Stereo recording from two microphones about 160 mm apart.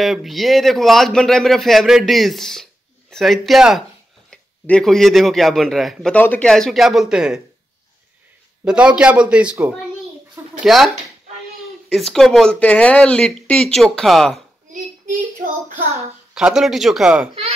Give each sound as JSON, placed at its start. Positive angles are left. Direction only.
{"t": 0.0, "sound": "a man's voice", "side_deg": 0}
{"t": 8.6, "sound": "a man's voice", "side_deg": -5}
{"t": 11.9, "sound": "a man's voice", "side_deg": 0}
{"t": 14.7, "sound": "child singing", "side_deg": -55}
{"t": 16.3, "sound": "a man's voice", "side_deg": -5}